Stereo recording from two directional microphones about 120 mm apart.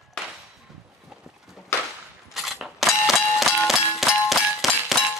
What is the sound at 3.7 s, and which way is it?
Music, centre (ahead or behind).